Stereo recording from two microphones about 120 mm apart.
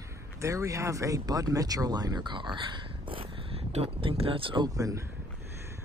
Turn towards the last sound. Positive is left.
turn(degrees=-30)  # may be behind; listen again after turning